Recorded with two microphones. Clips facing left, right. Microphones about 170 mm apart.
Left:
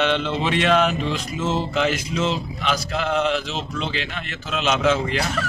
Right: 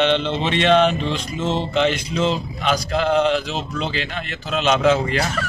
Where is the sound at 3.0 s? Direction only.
35° right (ahead or behind).